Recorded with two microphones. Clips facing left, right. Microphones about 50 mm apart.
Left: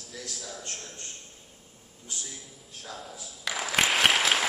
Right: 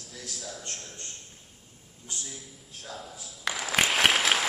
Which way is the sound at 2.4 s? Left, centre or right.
Centre.